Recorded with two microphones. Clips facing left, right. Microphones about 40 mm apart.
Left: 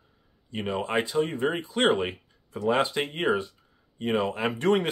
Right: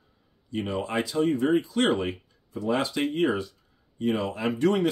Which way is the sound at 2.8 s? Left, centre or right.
Left.